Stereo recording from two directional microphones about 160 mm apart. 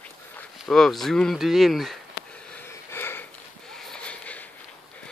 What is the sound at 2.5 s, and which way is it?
Wheeze, 15° left (ahead or behind).